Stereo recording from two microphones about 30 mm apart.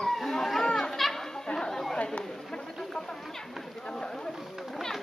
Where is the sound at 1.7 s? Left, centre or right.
Centre.